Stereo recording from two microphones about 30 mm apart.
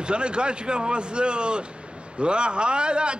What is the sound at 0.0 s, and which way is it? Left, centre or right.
A man's voice, right.